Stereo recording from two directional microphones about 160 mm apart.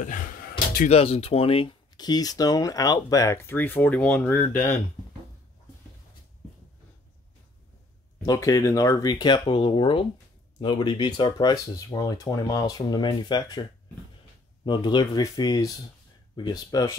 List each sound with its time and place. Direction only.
0.0 s a sound: 55° left (ahead or behind)
0.8 s speech: 40° left (ahead or behind); by 4.7 s 10° left (ahead or behind)
8.3 s speech: 20° left (ahead or behind)